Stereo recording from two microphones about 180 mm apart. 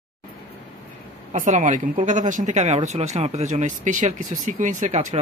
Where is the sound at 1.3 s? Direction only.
45° right (ahead or behind).